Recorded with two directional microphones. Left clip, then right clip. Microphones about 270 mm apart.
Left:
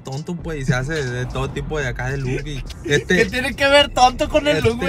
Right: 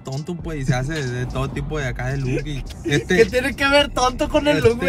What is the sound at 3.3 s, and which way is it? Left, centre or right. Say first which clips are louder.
Speech: left 2 dB; centre.